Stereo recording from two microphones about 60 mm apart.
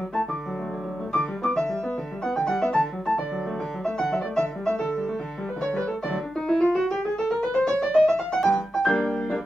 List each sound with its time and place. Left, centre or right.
1.1 s music: centre
3.8 s music: centre